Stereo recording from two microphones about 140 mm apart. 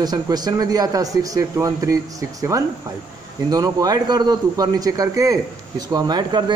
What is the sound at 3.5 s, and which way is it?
A man's voice, 25° right (ahead or behind).